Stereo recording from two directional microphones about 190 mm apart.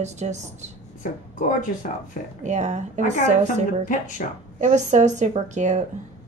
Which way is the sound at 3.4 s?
45° left (ahead or behind).